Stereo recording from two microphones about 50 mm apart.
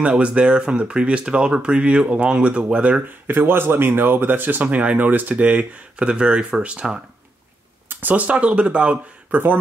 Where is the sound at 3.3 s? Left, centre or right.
Right.